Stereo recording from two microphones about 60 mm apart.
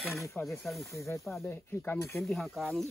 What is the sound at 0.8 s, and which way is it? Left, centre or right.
Speech, left.